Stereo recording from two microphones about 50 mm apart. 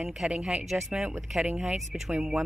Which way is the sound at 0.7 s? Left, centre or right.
Centre.